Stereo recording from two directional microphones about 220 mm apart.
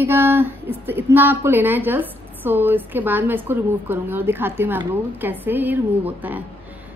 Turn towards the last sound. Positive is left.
turn(degrees=-10)  # may be behind; listen again after turning